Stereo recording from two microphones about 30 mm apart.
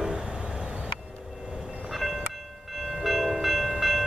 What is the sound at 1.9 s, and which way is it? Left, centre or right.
Train, centre.